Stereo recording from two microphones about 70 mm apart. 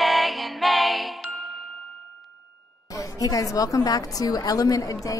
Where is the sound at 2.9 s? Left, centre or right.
Left.